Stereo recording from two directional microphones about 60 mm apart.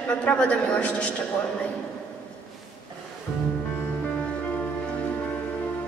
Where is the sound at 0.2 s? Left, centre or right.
Centre.